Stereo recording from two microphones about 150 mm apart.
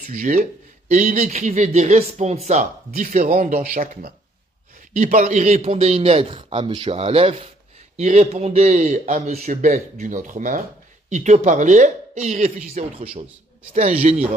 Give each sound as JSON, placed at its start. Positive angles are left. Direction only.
{"t": 0.1, "sound": "speech", "side_deg": -60}